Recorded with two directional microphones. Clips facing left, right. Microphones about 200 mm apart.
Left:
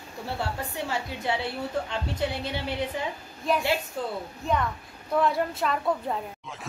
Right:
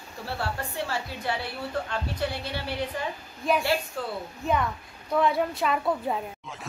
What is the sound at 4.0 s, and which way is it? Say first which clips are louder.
Speech: left 1 dB; 20° left (ahead or behind).